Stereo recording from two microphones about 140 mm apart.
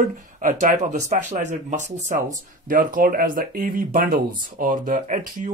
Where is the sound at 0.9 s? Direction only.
55° right (ahead or behind).